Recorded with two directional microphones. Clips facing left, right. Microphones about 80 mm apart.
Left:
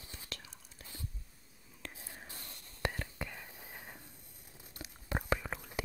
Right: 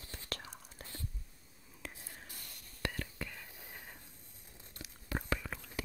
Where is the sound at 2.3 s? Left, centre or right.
Left.